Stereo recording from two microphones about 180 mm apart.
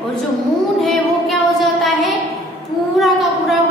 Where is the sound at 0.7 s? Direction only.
Centre (ahead or behind).